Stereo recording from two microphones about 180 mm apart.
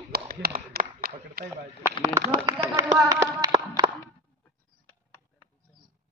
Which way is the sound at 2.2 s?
15° right (ahead or behind).